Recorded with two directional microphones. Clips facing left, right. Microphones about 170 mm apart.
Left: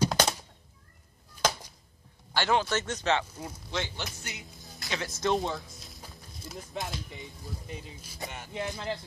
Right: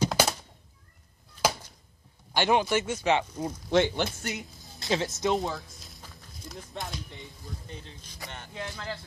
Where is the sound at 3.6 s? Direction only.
55° right (ahead or behind).